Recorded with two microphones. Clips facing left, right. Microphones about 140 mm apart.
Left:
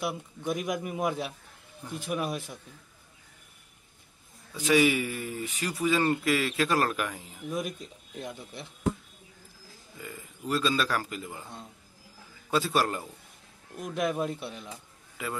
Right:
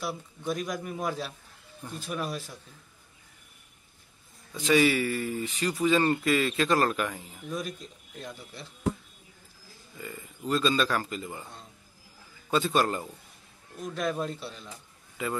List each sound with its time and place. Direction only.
0.0 s a man's voice: 20° left (ahead or behind)
4.6 s speech: 10° left (ahead or behind)
7.4 s a man's voice: 20° left (ahead or behind)
9.9 s speech: 5° left (ahead or behind)
12.4 s speech: 5° left (ahead or behind)
13.7 s a man's voice: 20° left (ahead or behind)